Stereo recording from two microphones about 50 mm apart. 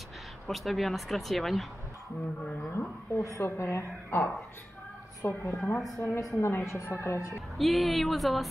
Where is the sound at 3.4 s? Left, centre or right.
Left.